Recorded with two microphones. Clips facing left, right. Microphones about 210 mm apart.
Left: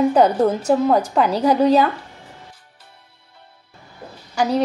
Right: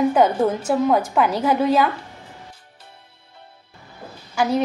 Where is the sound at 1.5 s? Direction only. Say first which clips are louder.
Left 6 dB; 35° left (ahead or behind).